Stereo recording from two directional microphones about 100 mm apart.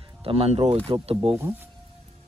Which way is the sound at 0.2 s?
80° right.